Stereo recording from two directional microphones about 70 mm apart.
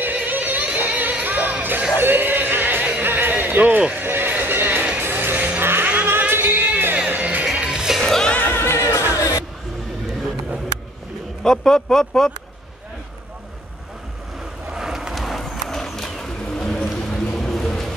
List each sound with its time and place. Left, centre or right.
0.0 s music: right
4.0 s neigh: right
5.0 s vehicle: right
5.6 s music: right
7.5 s music: centre
8.0 s music: centre
8.4 s music: left
9.1 s music: left
11.4 s speech: centre
14.7 s vehicle: centre